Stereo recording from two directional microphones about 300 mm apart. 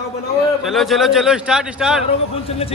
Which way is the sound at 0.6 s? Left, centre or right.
Centre.